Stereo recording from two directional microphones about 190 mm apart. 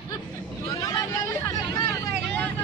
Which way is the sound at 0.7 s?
15° left (ahead or behind).